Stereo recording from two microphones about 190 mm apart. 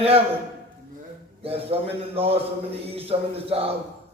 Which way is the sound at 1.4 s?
30° right (ahead or behind).